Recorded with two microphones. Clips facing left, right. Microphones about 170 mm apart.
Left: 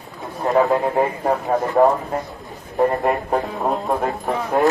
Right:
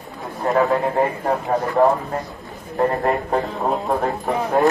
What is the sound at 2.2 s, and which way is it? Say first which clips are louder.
A man's voice: right 1 dB; centre (ahead or behind).